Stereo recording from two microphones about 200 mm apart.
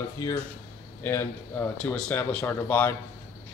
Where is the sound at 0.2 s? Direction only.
15° left (ahead or behind).